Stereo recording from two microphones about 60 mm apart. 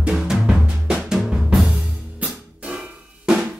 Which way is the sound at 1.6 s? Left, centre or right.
Right.